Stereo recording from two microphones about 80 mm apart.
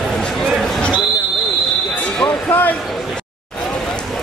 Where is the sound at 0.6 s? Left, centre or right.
Centre.